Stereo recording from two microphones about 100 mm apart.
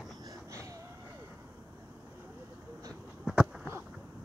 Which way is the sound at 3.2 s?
Centre (ahead or behind).